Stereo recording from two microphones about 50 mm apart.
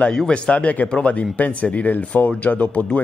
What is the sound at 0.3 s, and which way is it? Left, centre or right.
Speech, left.